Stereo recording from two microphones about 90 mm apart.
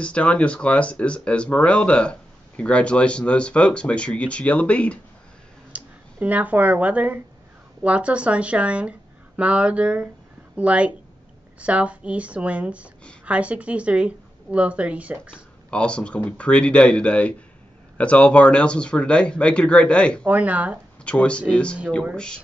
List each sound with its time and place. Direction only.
0.0 s speech: 15° left (ahead or behind)
5.7 s a woman's voice: 15° right (ahead or behind)
15.7 s speech: 10° left (ahead or behind)
20.2 s a woman's voice: 15° right (ahead or behind)
21.0 s speech: 15° left (ahead or behind)